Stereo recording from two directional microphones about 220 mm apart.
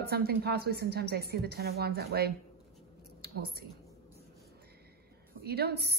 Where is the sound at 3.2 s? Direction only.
45° right (ahead or behind).